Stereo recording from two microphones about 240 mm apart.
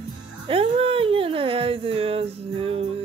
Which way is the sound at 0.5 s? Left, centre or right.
Right.